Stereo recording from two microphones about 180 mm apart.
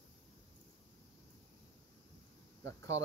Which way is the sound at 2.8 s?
15° left (ahead or behind).